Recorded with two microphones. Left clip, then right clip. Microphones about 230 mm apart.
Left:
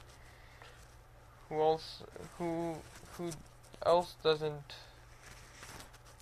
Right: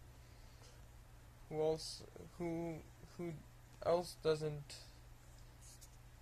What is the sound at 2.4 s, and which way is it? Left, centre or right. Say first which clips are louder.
Speech: left 6 dB; left.